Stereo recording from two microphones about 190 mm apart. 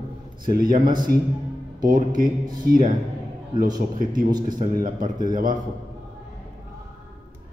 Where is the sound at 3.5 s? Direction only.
20° right (ahead or behind).